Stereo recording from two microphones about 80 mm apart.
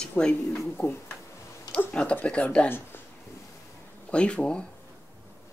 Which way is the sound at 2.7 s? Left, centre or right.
Left.